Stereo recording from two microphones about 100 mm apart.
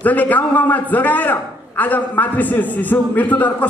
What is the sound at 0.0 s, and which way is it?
A man's voice, 15° left (ahead or behind).